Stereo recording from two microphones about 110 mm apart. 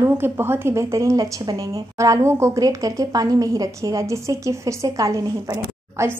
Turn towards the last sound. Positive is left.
turn(degrees=-30)  # may be behind; listen again after turning